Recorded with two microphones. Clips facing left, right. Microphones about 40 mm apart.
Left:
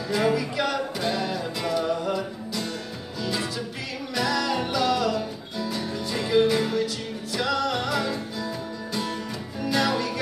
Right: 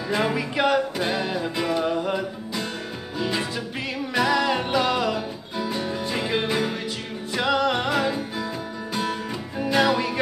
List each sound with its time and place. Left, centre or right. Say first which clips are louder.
0.1 s music: left 1 dB; right
9.6 s music: right 3 dB; right